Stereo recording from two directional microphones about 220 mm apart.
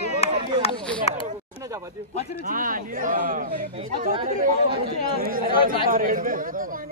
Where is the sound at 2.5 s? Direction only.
40° right (ahead or behind).